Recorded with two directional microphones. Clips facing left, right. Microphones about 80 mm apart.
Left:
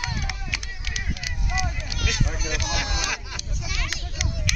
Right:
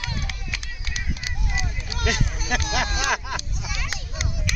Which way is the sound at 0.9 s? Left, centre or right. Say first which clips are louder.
Right 1 dB; right.